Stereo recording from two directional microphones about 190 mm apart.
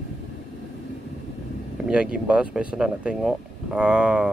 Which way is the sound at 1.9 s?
5° right (ahead or behind).